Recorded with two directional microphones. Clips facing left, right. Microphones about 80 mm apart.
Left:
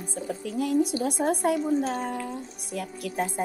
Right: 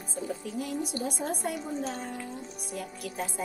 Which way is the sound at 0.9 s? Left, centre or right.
Left.